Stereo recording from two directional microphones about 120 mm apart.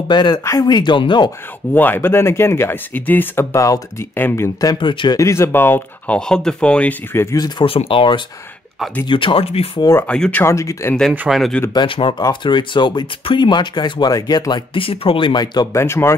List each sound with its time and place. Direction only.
0.1 s speech: 40° left (ahead or behind)
1.7 s speech: 15° left (ahead or behind)
4.7 s speech: 40° left (ahead or behind)
5.2 s speech: 25° left (ahead or behind)
6.1 s speech: 5° left (ahead or behind)
7.3 s speech: 35° left (ahead or behind)
7.9 s speech: 45° left (ahead or behind)
10.0 s speech: 10° left (ahead or behind)
10.4 s speech: 25° left (ahead or behind)
11.0 s speech: centre (ahead or behind)
11.7 s speech: 45° left (ahead or behind)
15.7 s speech: 20° left (ahead or behind)